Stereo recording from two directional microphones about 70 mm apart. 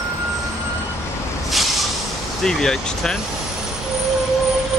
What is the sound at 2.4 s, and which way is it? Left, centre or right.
Speech, centre.